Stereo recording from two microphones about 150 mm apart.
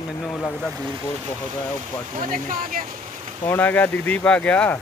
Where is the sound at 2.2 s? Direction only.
65° right (ahead or behind).